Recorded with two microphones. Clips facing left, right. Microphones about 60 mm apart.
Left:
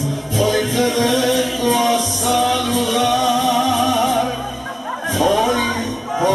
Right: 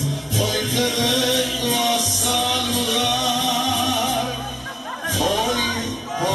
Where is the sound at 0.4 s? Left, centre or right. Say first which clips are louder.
Left 6 dB; centre.